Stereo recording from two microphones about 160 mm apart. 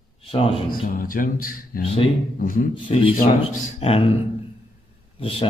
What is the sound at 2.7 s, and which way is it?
Speech, 35° left (ahead or behind).